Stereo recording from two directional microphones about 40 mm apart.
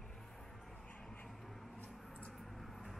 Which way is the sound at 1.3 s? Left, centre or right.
Centre.